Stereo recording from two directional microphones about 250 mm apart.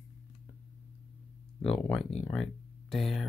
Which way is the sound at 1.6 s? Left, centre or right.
Centre.